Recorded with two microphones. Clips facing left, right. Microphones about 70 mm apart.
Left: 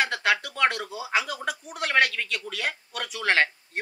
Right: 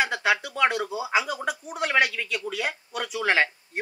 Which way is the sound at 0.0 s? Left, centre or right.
Centre.